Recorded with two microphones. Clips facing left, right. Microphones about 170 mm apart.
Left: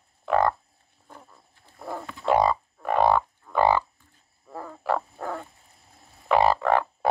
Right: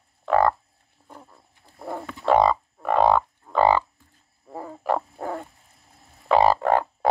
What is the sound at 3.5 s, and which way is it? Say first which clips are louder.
Frog: right 2 dB; 10° right (ahead or behind).